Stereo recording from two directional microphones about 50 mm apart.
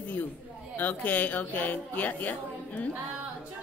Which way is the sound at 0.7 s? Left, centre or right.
Left.